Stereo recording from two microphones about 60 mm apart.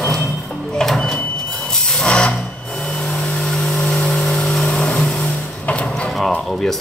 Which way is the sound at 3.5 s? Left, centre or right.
Centre.